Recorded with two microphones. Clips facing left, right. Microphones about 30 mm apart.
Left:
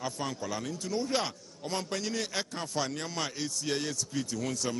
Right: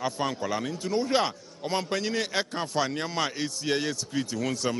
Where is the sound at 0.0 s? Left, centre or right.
Right.